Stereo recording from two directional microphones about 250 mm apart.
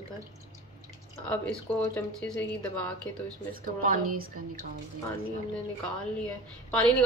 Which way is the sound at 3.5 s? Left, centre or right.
Right.